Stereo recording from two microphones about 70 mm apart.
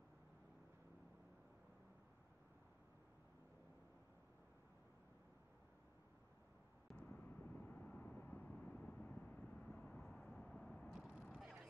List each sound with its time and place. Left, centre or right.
6.9 s vehicle: centre
7.2 s vehicle: left
8.5 s vehicle: centre
10.9 s a sound: centre